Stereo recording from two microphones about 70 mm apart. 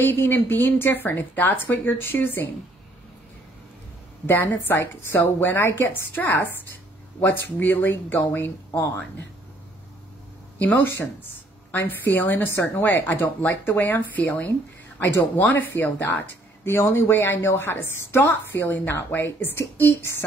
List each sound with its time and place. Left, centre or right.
0.1 s speech: left
4.3 s a woman's voice: left
8.7 s a woman's voice: left
10.6 s a woman's voice: left